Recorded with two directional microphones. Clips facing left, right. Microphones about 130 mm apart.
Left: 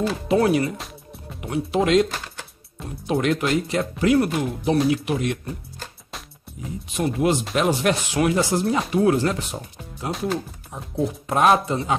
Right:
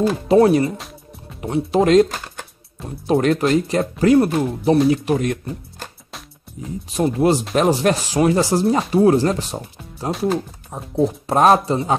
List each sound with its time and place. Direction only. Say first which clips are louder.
0.0 s speech: right 6 dB; 35° right (ahead or behind)
6.9 s speech: right 4 dB; 35° right (ahead or behind)